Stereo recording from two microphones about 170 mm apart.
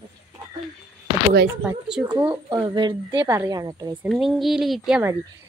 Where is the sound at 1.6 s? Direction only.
5° right (ahead or behind).